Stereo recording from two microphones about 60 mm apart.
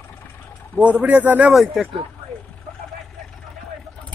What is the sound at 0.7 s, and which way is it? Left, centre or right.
Speech, right.